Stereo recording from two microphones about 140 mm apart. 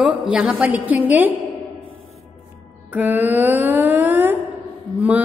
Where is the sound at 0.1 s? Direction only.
5° right (ahead or behind).